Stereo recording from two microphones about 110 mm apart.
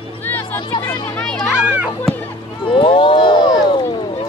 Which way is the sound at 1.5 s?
5° right (ahead or behind).